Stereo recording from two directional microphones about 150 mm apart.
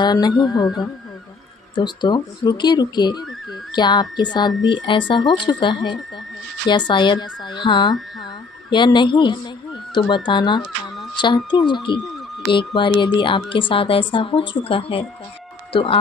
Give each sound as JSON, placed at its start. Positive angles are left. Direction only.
{"t": 0.0, "sound": "speech", "side_deg": 25}
{"t": 1.8, "sound": "speech", "side_deg": 30}